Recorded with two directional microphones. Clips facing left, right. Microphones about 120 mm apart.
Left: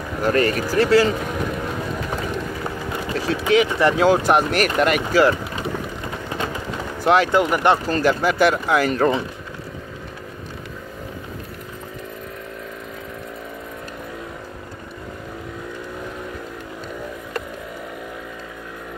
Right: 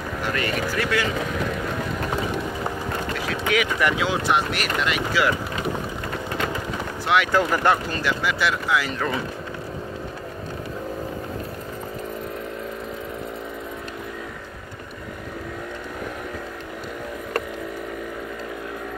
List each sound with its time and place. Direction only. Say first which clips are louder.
0.2 s speech: left 7 dB; 40° left (ahead or behind)
3.4 s speech: left 5 dB; 30° left (ahead or behind)
4.0 s speech: left 6 dB; 45° left (ahead or behind)
7.3 s speech: left 3 dB; 20° left (ahead or behind)
7.9 s speech: left 6 dB; 40° left (ahead or behind)